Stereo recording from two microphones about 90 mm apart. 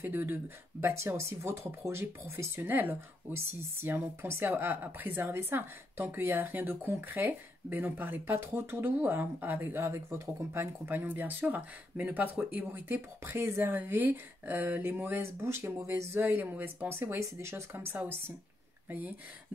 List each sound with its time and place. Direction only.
0.0 s speech: 25° right (ahead or behind)
15.4 s speech: 30° right (ahead or behind)